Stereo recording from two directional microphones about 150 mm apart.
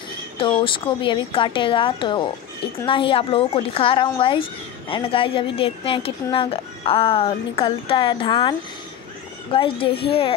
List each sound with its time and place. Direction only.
0.4 s speech: 35° left (ahead or behind)